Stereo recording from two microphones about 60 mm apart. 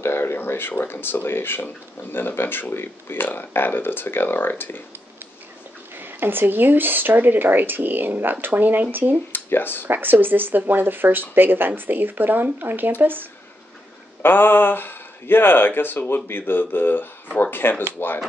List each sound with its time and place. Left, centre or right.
0.0 s speech: left
5.9 s speech: right
9.3 s a sound: left
9.8 s speech: right
14.2 s speech: left